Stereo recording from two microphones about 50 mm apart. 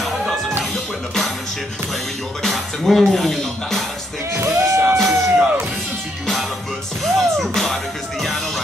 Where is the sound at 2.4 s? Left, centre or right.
Centre.